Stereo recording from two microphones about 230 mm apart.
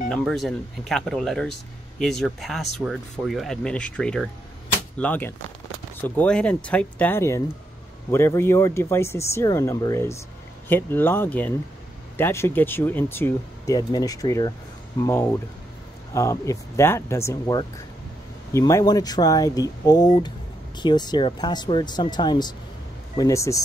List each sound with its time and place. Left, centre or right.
0.1 s speech: centre